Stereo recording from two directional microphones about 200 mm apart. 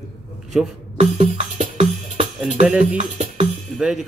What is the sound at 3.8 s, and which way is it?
Speech, 5° right (ahead or behind).